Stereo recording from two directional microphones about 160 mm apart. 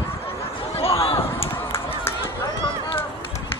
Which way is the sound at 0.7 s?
35° left (ahead or behind).